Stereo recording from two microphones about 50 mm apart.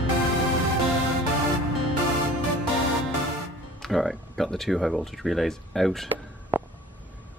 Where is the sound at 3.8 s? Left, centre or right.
Centre.